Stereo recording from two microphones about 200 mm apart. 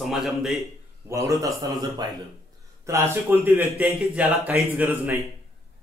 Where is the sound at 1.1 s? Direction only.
15° right (ahead or behind).